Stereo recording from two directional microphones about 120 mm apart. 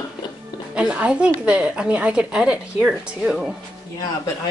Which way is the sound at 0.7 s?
10° right (ahead or behind).